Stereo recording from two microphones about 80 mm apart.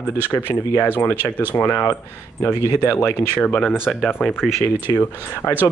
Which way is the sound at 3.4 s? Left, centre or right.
Centre.